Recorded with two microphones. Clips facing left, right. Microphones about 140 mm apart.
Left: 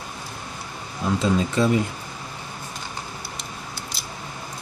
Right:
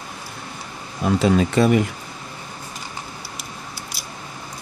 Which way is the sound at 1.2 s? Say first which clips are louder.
Right 4 dB; 70° right (ahead or behind).